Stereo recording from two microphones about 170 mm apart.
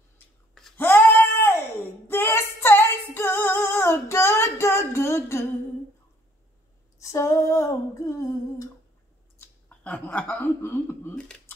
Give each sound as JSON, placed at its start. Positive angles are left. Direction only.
{"t": 0.7, "sound": "a sound", "side_deg": 10}
{"t": 2.0, "sound": "female singing", "side_deg": 15}
{"t": 7.0, "sound": "female singing", "side_deg": 20}
{"t": 9.7, "sound": "speech", "side_deg": 10}